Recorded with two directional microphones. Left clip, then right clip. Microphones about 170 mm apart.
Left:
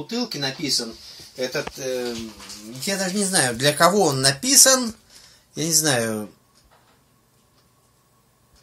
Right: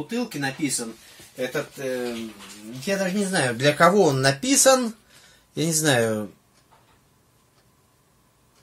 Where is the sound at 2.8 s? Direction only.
20° right (ahead or behind); by 6.2 s 60° right (ahead or behind).